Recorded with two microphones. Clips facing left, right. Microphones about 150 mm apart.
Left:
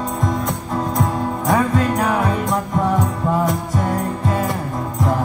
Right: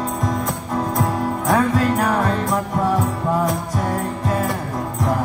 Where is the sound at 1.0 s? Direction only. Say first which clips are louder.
Even; centre (ahead or behind).